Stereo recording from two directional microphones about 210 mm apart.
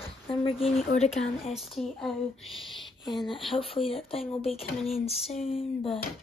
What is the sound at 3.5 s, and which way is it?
Speech, 25° left (ahead or behind).